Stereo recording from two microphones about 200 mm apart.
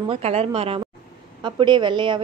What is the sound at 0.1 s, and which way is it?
A woman's voice, 30° right (ahead or behind).